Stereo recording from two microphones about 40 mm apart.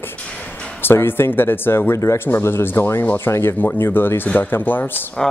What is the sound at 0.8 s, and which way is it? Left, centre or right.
Speech, left.